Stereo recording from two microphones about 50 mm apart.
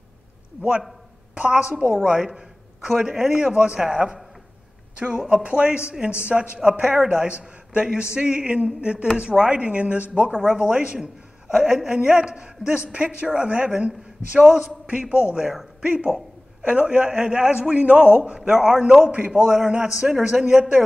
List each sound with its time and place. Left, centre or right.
0.6 s a woman's voice: centre
2.0 s a sound: centre
3.0 s a woman's voice: centre
5.3 s a man's voice: right
19.5 s a woman's voice: centre